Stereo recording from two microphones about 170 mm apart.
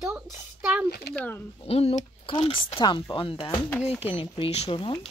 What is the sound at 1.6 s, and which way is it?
Speech, 35° left (ahead or behind).